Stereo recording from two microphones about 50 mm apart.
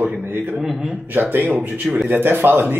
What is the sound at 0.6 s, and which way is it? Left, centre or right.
Speech, centre.